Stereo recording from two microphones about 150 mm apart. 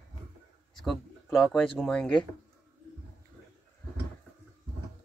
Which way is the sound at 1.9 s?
10° left (ahead or behind).